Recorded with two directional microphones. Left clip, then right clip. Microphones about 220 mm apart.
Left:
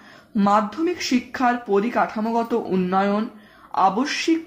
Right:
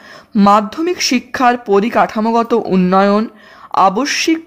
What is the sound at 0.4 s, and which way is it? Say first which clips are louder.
Speech: right 8 dB; 45° right (ahead or behind).